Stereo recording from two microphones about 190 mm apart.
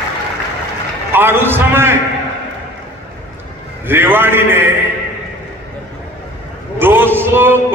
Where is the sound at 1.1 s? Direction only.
10° right (ahead or behind).